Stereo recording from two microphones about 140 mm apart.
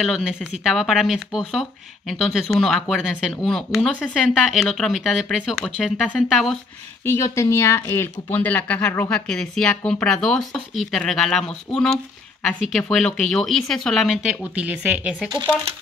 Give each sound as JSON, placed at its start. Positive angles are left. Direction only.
{"t": 0.0, "sound": "speech", "side_deg": -5}
{"t": 7.1, "sound": "speech", "side_deg": 20}
{"t": 15.3, "sound": "speech", "side_deg": -30}